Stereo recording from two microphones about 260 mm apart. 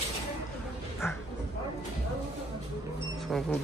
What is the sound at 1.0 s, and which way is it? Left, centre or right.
Bow-wow, centre.